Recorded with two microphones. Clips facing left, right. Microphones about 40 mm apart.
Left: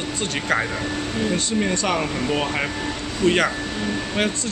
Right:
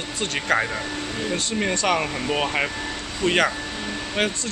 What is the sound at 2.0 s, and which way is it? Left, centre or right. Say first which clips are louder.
Speech: left 1 dB; centre.